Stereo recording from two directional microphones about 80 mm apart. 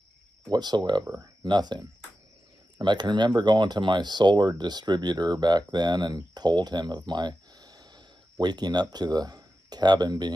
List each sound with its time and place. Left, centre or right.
0.5 s speech: right